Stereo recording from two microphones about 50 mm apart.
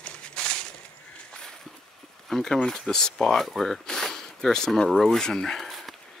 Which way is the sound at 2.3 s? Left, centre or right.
Centre.